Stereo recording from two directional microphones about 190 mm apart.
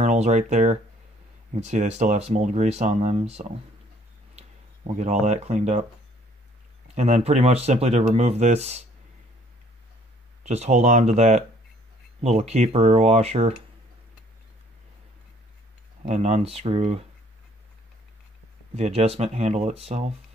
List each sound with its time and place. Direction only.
0.0 s speech: 35° right (ahead or behind)
7.0 s speech: 35° right (ahead or behind)
10.4 s speech: 35° right (ahead or behind)
16.0 s speech: 35° right (ahead or behind)
18.8 s speech: 30° right (ahead or behind)